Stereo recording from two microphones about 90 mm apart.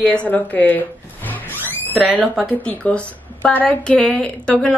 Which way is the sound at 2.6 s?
15° left (ahead or behind).